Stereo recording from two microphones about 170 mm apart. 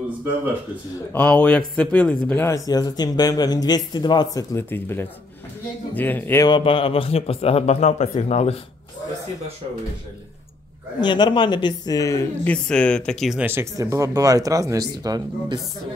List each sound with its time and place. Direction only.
1.1 s speech: 5° left (ahead or behind)
6.4 s a man's voice: 30° left (ahead or behind)
11.0 s speech: 25° left (ahead or behind)
12.6 s speech: 5° left (ahead or behind)
13.5 s speech: 15° right (ahead or behind)